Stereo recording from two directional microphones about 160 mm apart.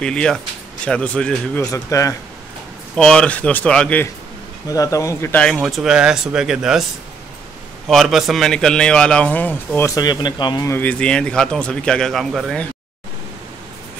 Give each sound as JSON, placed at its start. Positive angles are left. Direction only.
{"t": 0.0, "sound": "a man's voice", "side_deg": 5}
{"t": 1.7, "sound": "speech", "side_deg": 20}
{"t": 3.0, "sound": "speech", "side_deg": 5}
{"t": 4.6, "sound": "speech", "side_deg": 20}
{"t": 5.4, "sound": "a man's voice", "side_deg": 0}
{"t": 7.9, "sound": "a man's voice", "side_deg": 0}
{"t": 10.8, "sound": "a man's voice", "side_deg": 5}